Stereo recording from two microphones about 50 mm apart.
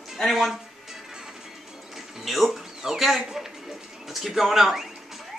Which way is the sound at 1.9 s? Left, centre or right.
Centre.